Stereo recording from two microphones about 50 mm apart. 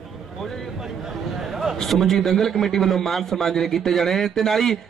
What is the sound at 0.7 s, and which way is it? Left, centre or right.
A man's voice, centre.